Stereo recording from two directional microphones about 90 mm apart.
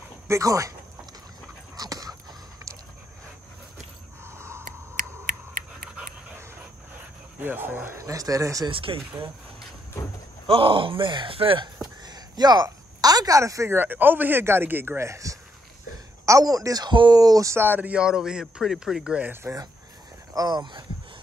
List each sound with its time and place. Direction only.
0.3 s speech: 35° right (ahead or behind)
1.8 s dog: 45° right (ahead or behind)
4.3 s a sound: 30° right (ahead or behind)
7.3 s speech: 20° right (ahead or behind)
8.0 s speech: 40° right (ahead or behind)
8.6 s speech: 85° right
10.4 s speech: 75° right (ahead or behind)
11.8 s a woman's voice: 50° right (ahead or behind)
16.9 s speech: 60° right (ahead or behind)
17.2 s speech: 40° right (ahead or behind)
17.6 s speech: 20° right (ahead or behind)
20.3 s speech: 50° right (ahead or behind)